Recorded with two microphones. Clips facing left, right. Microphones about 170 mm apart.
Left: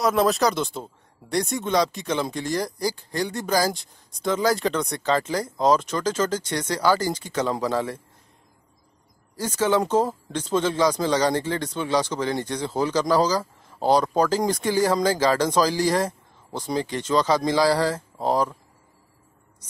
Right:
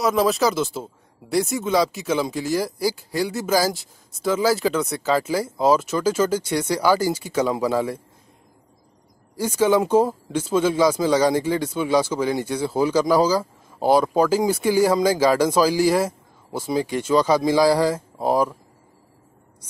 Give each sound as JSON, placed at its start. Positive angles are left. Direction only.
{"t": 0.0, "sound": "speech", "side_deg": 0}
{"t": 9.4, "sound": "speech", "side_deg": -10}